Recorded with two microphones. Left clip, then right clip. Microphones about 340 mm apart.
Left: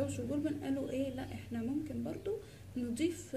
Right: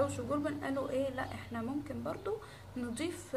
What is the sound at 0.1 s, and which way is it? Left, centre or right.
A woman's voice, right.